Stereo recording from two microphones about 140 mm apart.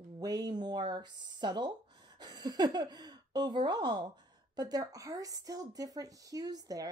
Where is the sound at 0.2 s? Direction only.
25° right (ahead or behind).